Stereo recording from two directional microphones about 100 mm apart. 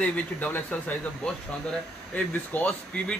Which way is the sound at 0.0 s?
15° left (ahead or behind).